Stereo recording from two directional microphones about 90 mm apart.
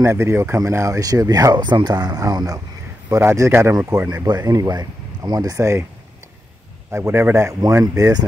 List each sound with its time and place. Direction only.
0.0 s speech: 30° right (ahead or behind)
3.1 s a man's voice: 30° right (ahead or behind)
6.9 s a man's voice: 30° right (ahead or behind)
7.8 s speech: 40° right (ahead or behind)